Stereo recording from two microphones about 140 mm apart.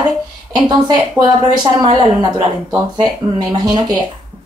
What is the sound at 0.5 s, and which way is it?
A woman's voice, 25° right (ahead or behind).